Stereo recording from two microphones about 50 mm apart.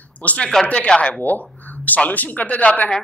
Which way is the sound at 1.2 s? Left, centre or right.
Left.